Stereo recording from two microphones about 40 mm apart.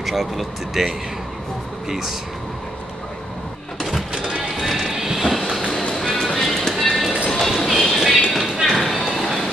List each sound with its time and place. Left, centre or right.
0.0 s speech: centre
4.1 s music: centre
4.4 s music: centre
5.9 s music: centre
7.2 s run: centre
7.9 s a sound: centre
8.3 s clip-clop: centre